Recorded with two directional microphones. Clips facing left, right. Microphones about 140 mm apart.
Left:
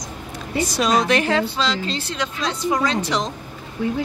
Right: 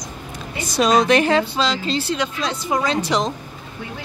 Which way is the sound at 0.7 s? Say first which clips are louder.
Right 4 dB; 25° right (ahead or behind).